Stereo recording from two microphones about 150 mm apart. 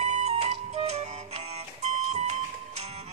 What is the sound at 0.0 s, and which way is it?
Music, 50° right (ahead or behind).